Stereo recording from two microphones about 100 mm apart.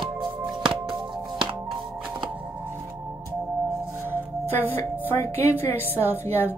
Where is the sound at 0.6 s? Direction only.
55° right (ahead or behind).